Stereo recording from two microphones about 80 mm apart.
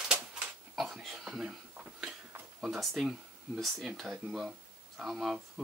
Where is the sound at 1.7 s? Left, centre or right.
Centre.